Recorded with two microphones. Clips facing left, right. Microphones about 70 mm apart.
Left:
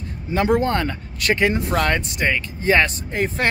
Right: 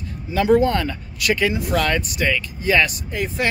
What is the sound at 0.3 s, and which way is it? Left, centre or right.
Speech, left.